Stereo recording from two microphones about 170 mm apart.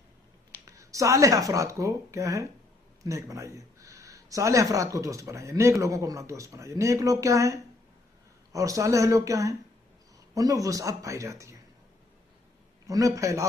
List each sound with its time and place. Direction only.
0.7 s speech: 20° right (ahead or behind)
12.8 s speech: 20° right (ahead or behind)